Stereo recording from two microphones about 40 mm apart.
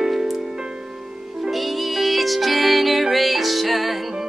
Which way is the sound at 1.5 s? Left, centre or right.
Centre.